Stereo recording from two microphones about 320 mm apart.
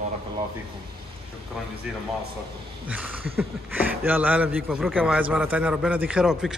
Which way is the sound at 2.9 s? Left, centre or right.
Centre.